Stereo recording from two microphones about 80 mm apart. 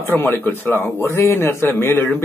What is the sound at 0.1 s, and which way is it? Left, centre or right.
Speech, left.